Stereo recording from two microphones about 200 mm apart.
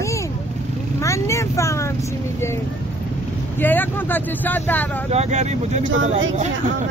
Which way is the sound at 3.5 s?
10° left (ahead or behind).